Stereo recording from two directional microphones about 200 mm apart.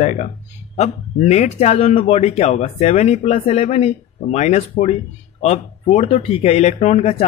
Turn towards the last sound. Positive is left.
turn(degrees=35)  # may be behind; listen again after turning